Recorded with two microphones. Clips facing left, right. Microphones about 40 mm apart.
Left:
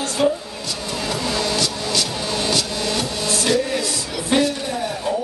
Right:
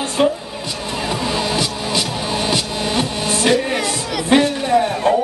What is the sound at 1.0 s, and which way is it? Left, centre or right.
Music, centre.